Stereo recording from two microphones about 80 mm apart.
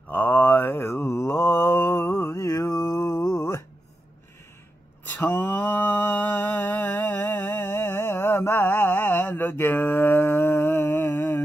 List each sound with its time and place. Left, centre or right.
0.1 s mantra: left
5.2 s mantra: left